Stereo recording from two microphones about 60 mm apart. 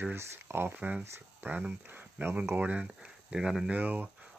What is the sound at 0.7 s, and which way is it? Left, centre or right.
Speech, right.